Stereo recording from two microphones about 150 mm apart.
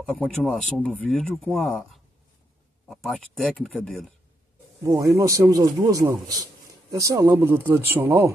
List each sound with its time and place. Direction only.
0.1 s speech: 10° left (ahead or behind)
4.8 s a man's voice: 20° right (ahead or behind)